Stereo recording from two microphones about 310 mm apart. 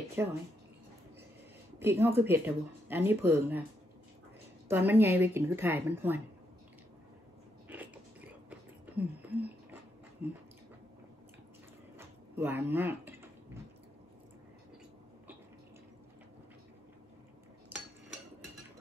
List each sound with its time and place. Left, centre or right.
0.2 s speech: centre
1.8 s speech: centre
4.6 s speech: centre
7.6 s biting: centre
10.2 s speech: centre
12.0 s a sound: centre